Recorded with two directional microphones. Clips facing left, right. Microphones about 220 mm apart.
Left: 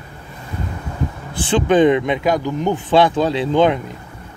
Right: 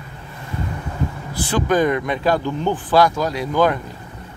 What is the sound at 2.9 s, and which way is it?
Speech, 30° left (ahead or behind).